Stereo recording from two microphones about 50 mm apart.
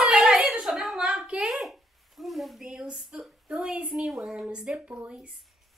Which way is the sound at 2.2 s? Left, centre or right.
Centre.